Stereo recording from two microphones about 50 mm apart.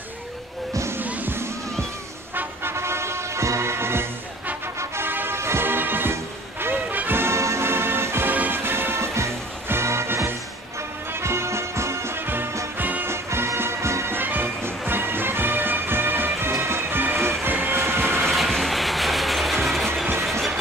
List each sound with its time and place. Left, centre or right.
2.7 s music: right
5.7 s music: right
7.2 s music: right
8.3 s music: right
12.7 s music: right
13.0 s music: right
14.1 s music: right
16.6 s music: right
17.2 s vehicle: right
18.2 s train: centre